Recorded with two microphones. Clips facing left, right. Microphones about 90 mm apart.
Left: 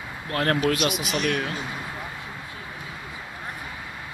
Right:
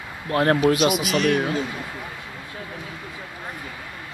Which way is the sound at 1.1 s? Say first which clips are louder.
Right 5 dB; 40° right (ahead or behind).